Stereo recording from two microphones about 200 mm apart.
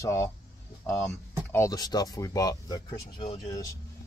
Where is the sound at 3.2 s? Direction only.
30° left (ahead or behind).